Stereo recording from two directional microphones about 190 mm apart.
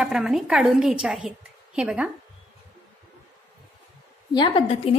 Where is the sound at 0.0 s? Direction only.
Centre (ahead or behind).